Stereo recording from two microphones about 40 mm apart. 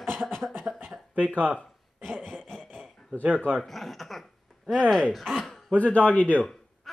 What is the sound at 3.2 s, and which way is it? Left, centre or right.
Speech, right.